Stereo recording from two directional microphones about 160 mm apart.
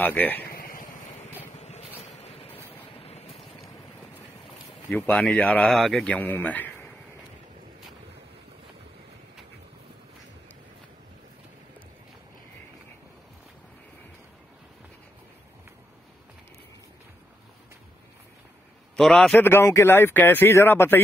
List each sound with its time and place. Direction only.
0.0 s speech: 10° left (ahead or behind)
0.5 s a sound: 65° left (ahead or behind)
1.6 s vehicle: 40° left (ahead or behind)
4.8 s speech: 10° left (ahead or behind)
18.9 s a man's voice: 5° left (ahead or behind)
19.4 s speech: 15° left (ahead or behind)